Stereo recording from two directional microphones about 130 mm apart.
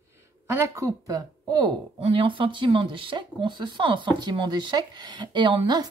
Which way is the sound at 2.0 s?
45° right (ahead or behind).